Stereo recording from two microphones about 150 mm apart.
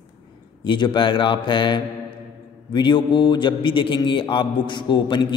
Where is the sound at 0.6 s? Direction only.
30° left (ahead or behind).